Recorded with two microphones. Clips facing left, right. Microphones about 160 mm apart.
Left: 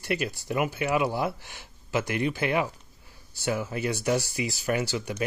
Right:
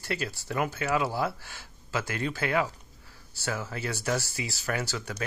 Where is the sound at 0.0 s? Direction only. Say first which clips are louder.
Left 4 dB; 15° left (ahead or behind).